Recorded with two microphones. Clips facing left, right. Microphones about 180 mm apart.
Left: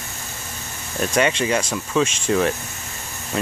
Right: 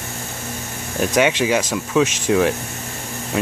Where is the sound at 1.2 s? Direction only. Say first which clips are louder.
Right 2 dB; 5° right (ahead or behind).